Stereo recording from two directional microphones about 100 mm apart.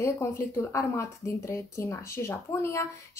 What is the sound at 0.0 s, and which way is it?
A woman's voice, 25° left (ahead or behind).